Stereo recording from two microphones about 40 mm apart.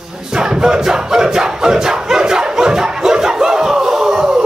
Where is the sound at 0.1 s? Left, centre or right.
Centre.